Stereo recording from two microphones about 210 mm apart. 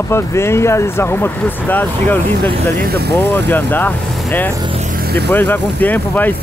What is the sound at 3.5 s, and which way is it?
Speech, 10° left (ahead or behind).